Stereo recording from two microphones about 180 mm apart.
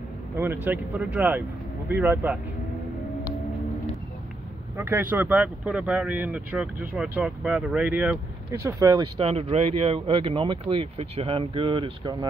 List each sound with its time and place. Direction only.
0.4 s speech: 10° right (ahead or behind)
4.7 s speech: 10° right (ahead or behind)
8.5 s speech: 15° right (ahead or behind)
9.2 s speech: 35° right (ahead or behind)